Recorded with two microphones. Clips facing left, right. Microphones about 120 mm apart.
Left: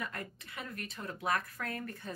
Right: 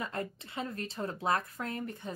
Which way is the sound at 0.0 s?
25° right (ahead or behind).